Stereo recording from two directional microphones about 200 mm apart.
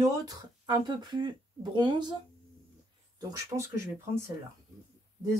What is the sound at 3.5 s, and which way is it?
Speech, 25° right (ahead or behind).